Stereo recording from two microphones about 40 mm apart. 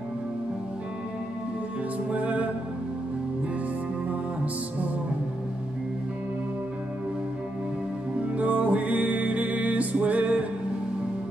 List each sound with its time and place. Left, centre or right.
2.0 s music: right
8.3 s music: right